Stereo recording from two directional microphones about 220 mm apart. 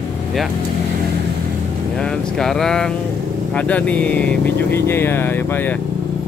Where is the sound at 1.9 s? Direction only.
Centre (ahead or behind).